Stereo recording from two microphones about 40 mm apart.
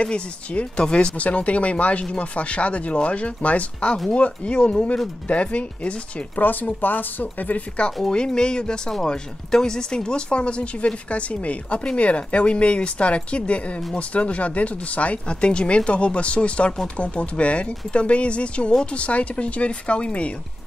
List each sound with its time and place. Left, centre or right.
0.0 s speech: left
1.1 s speech: left
6.3 s speech: left
8.1 s speech: left